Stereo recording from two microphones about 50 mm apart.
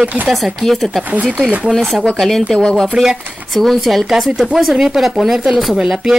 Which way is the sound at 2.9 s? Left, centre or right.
Centre.